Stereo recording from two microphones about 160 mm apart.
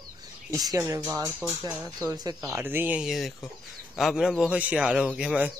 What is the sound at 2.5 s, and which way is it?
Speech, 10° right (ahead or behind).